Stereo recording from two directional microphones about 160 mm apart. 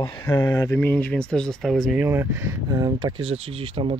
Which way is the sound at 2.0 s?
15° right (ahead or behind).